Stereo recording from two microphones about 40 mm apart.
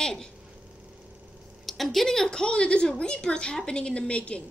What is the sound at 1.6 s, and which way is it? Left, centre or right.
A woman's voice, centre.